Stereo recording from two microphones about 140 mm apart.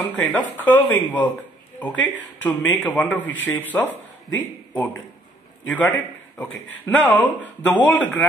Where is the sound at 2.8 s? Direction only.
5° left (ahead or behind).